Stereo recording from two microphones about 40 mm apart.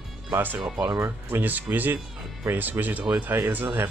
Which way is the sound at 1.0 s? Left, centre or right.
Right.